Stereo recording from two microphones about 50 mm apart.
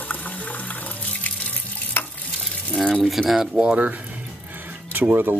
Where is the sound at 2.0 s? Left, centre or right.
Left.